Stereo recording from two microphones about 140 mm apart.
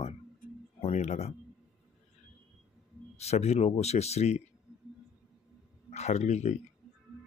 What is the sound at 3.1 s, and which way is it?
Speech, 50° left (ahead or behind).